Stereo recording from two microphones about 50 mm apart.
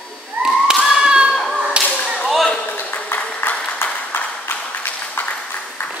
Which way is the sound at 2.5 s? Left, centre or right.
Left.